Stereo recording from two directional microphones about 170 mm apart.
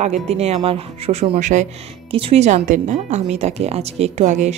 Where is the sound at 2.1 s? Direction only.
35° right (ahead or behind).